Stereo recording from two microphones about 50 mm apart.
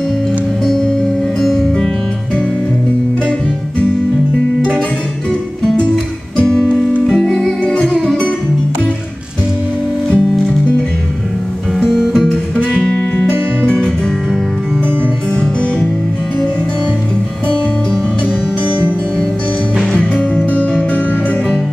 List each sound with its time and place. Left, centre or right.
1.4 s music: centre
4.6 s music: centre
6.3 s music: centre
7.6 s music: left
10.0 s music: centre
11.8 s music: centre
12.5 s music: centre
20.0 s music: left